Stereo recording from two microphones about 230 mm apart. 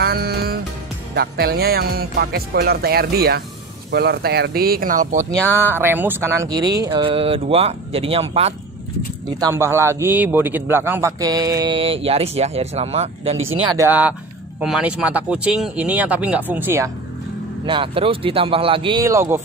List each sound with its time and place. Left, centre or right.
0.0 s music: right
1.1 s speech: right
5.3 s speech: centre; by 8.5 s right
9.4 s speech: centre; by 13.4 s right
13.7 s speech: centre
17.6 s speech: right